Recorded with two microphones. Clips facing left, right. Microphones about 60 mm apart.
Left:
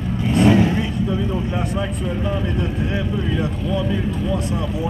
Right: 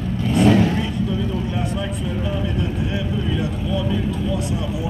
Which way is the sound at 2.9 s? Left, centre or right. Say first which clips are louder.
Left 1 dB; left.